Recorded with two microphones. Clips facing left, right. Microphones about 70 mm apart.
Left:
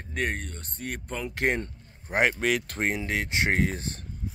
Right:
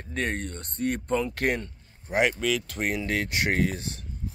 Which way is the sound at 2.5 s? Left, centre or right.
Left.